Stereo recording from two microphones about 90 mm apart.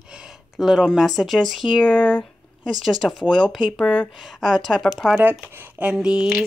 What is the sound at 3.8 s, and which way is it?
Speech, 10° left (ahead or behind).